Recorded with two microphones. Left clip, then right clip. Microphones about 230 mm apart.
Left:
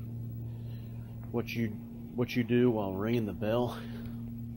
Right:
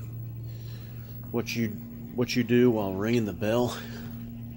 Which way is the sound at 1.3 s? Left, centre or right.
Centre.